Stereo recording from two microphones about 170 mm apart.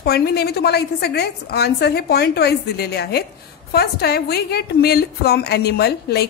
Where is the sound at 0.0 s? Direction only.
70° left (ahead or behind).